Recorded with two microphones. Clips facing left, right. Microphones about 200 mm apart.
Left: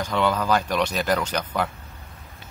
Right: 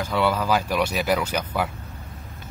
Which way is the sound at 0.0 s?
10° right (ahead or behind).